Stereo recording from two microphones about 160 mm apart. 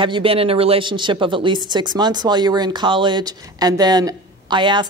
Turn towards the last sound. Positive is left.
turn(degrees=-30)  # may be behind; listen again after turning